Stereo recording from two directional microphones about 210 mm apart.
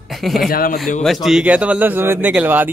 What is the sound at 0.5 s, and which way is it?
Speech, 45° left (ahead or behind).